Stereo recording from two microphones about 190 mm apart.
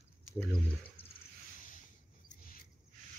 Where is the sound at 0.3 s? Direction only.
10° left (ahead or behind).